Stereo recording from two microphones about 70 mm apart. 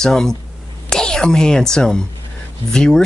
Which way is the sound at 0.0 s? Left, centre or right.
Centre.